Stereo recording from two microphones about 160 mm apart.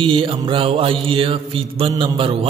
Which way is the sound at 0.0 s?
35° right (ahead or behind).